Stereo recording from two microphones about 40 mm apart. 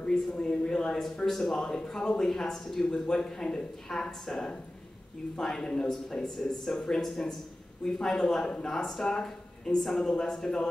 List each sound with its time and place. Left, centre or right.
0.0 s a man's voice: centre